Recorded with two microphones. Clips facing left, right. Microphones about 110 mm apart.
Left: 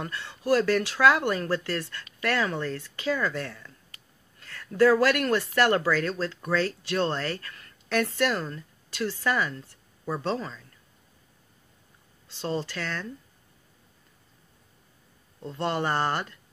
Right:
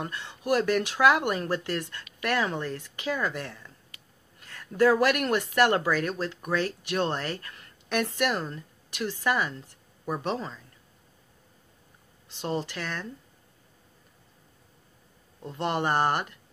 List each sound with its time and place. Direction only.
0.0 s speech: 15° right (ahead or behind)
12.3 s speech: 15° right (ahead or behind)
15.4 s speech: 15° right (ahead or behind)